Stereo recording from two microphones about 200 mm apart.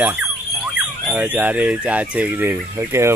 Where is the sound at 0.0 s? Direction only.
10° right (ahead or behind).